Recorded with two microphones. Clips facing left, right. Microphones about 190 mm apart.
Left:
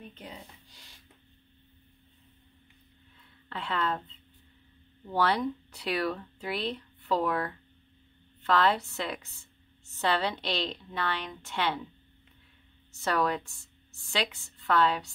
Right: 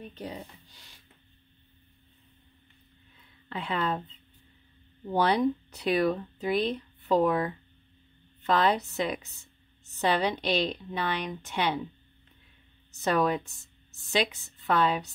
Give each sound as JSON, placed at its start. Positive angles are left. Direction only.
{"t": 3.4, "sound": "a woman's voice", "side_deg": -15}
{"t": 5.0, "sound": "a woman's voice", "side_deg": -20}
{"t": 13.0, "sound": "a woman's voice", "side_deg": -20}